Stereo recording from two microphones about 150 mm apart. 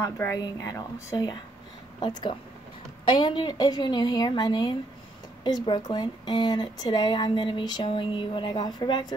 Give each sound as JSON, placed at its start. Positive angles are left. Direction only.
{"t": 0.0, "sound": "a woman's voice", "side_deg": 20}